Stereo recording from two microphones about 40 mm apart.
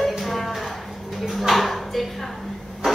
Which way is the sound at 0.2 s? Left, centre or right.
Centre.